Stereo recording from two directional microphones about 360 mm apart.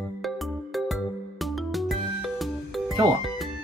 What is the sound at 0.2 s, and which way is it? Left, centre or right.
Music, centre.